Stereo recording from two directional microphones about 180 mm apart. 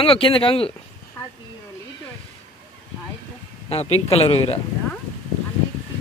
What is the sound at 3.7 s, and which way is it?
Speech, 35° left (ahead or behind).